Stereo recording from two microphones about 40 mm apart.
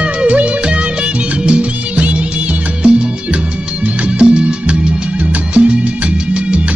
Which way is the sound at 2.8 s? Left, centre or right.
Right.